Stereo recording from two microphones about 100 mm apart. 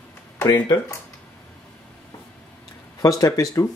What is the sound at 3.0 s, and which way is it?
Speech, 40° left (ahead or behind).